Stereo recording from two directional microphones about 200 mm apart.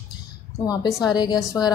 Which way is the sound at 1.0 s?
20° left (ahead or behind).